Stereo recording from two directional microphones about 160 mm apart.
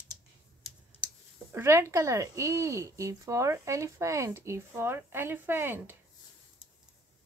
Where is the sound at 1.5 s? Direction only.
15° right (ahead or behind).